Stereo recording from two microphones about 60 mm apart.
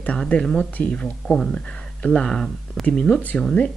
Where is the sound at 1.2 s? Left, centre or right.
Centre.